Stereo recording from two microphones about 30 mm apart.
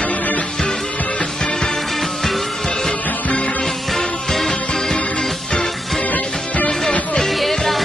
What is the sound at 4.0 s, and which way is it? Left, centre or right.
Music, centre.